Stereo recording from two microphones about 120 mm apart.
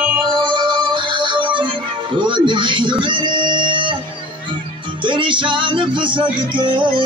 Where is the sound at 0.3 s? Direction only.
40° right (ahead or behind).